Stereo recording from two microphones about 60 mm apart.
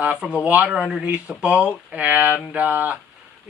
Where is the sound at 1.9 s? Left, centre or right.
Right.